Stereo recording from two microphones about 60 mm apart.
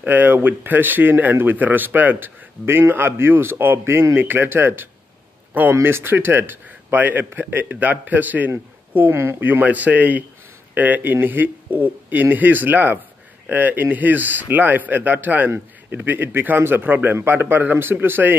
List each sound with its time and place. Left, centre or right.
0.0 s a man's voice: right